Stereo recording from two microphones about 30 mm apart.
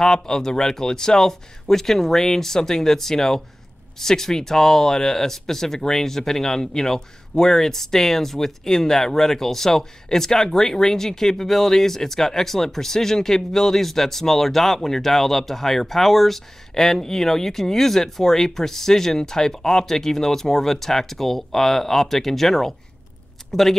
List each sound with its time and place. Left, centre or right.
0.0 s speech: centre
1.7 s speech: centre